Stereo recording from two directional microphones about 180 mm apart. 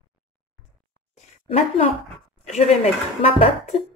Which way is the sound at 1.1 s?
35° left (ahead or behind).